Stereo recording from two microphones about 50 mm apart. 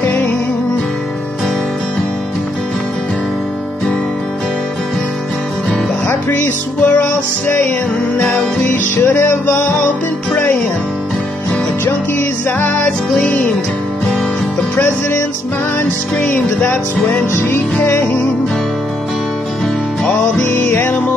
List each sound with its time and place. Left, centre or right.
0.0 s music: left
6.0 s music: left
11.8 s music: left
13.1 s music: left
16.2 s music: left
20.4 s music: left